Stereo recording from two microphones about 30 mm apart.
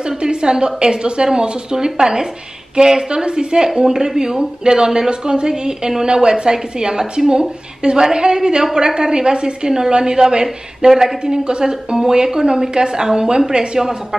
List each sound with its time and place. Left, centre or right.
0.2 s a woman's voice: right
10.9 s a woman's voice: centre